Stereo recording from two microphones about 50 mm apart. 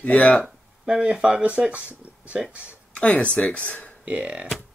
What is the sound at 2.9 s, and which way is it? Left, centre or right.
Speech, left.